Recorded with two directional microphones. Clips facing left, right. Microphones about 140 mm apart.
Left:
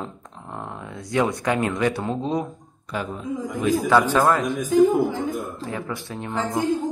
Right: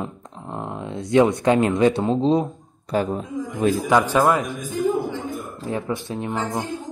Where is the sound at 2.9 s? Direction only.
35° right (ahead or behind).